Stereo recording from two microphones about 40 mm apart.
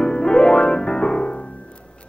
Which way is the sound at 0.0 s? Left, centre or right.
Left.